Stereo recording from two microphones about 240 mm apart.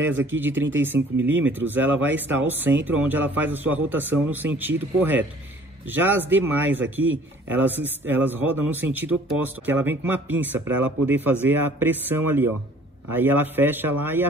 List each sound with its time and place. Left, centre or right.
0.0 s a man's voice: centre